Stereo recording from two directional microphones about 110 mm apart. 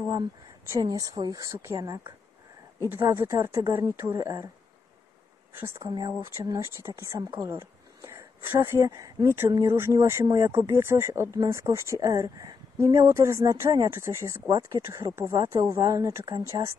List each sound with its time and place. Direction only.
0.7 s a woman's voice: 30° right (ahead or behind)
5.9 s a woman's voice: 40° right (ahead or behind)
14.5 s a woman's voice: 40° right (ahead or behind)
14.9 s a woman's voice: 25° right (ahead or behind)